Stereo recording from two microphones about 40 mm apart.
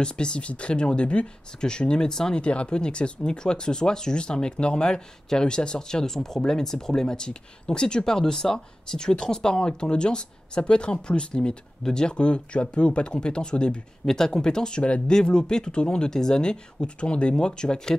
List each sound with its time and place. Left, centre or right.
0.0 s speech: left
2.4 s speech: left